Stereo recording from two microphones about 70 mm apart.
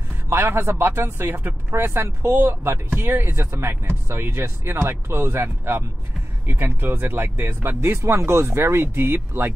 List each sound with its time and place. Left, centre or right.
0.3 s speech: right